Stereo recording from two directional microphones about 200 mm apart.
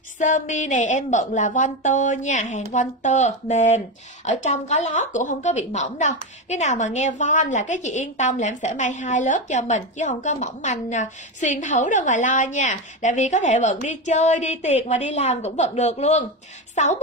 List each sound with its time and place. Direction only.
0.2 s speech: 40° left (ahead or behind)